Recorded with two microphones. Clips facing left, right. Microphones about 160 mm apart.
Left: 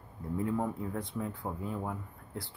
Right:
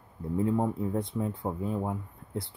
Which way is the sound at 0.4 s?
20° right (ahead or behind).